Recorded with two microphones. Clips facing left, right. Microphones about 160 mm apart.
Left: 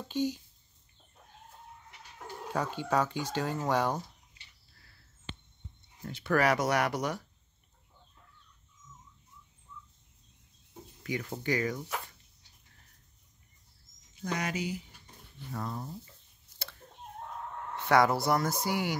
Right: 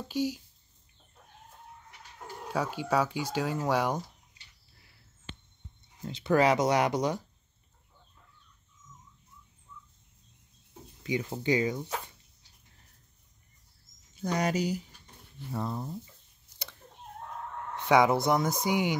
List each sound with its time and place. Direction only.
0.1 s speech: 10° right (ahead or behind)
2.5 s speech: 10° right (ahead or behind)
6.0 s speech: 20° right (ahead or behind)
11.0 s speech: 20° right (ahead or behind)
14.2 s speech: 35° right (ahead or behind)
17.8 s speech: 15° right (ahead or behind)